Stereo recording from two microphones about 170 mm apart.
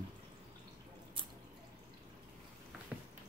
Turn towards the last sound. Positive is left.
turn(degrees=-10)  # may be behind; listen again after turning